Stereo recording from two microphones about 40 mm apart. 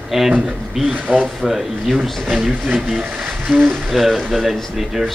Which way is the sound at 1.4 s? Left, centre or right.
Centre.